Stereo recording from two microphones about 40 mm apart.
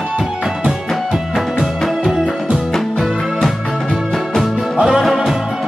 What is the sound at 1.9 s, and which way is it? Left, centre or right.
Music, centre.